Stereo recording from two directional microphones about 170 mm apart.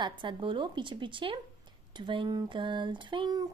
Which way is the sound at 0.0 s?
30° right (ahead or behind).